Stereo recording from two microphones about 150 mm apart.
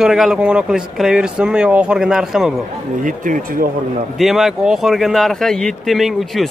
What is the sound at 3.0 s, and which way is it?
Speech, 65° right (ahead or behind).